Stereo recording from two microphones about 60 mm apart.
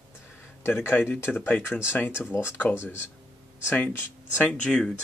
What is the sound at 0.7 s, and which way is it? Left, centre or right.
Speech, left.